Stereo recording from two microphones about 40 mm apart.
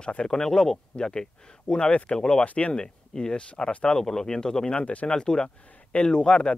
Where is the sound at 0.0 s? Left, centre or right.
Left.